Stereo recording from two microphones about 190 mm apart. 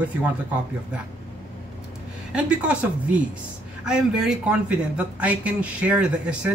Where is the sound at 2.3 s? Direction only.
5° right (ahead or behind).